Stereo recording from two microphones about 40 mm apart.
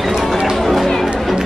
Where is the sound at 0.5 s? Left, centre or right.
Centre.